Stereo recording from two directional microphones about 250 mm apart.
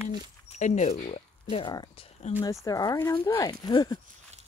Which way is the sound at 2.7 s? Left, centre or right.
Centre.